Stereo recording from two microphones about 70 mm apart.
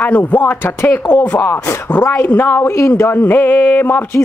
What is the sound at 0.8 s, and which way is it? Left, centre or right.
Speech, left.